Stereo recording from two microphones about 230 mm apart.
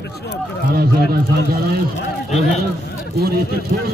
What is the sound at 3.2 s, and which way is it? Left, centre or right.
Speech, right.